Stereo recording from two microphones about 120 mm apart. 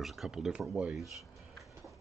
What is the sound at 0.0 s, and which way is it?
Speech, centre (ahead or behind).